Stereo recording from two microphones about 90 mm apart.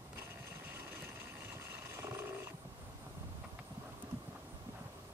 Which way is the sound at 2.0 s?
30° right (ahead or behind).